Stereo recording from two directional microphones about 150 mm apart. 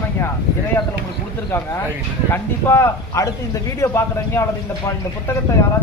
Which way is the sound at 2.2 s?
15° left (ahead or behind).